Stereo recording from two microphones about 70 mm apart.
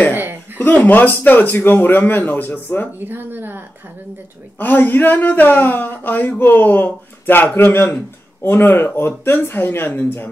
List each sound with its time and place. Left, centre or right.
0.1 s chuckle: right
0.6 s speech: left
3.0 s speech: right
4.6 s speech: left